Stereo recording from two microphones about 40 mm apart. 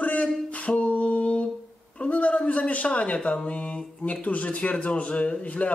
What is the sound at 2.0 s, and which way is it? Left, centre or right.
A man's voice, left.